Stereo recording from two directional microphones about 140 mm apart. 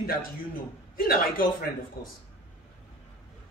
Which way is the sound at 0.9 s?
90° left.